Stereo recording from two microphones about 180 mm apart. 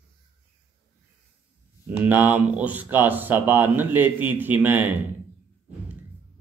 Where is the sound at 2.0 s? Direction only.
10° right (ahead or behind).